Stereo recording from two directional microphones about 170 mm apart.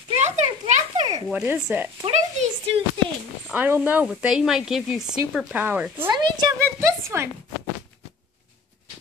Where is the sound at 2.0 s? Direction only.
40° right (ahead or behind).